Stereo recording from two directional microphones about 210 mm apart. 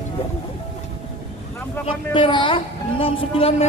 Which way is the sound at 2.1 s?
25° left (ahead or behind).